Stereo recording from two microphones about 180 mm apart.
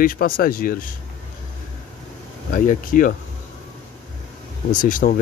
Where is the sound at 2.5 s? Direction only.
50° left (ahead or behind).